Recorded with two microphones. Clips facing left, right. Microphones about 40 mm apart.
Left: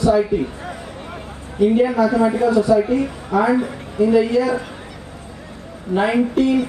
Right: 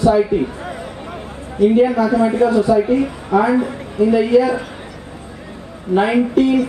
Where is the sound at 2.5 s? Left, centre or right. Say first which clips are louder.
Right 1 dB; right.